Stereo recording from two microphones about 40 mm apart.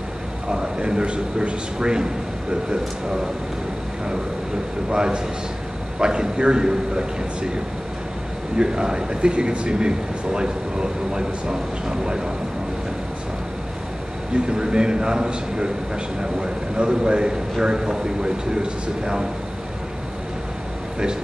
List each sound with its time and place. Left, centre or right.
0.5 s speech: right
4.9 s speech: centre
8.5 s speech: centre
14.3 s speech: right